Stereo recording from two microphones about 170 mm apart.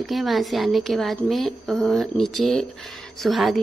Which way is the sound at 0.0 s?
Centre (ahead or behind).